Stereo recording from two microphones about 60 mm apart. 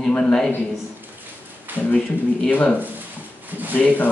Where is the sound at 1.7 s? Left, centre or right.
Right.